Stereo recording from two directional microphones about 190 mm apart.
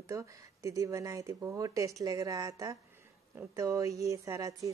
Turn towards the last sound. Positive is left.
turn(degrees=-15)  # may be behind; listen again after turning